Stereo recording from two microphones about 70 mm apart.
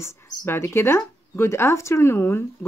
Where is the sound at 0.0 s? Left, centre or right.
Left.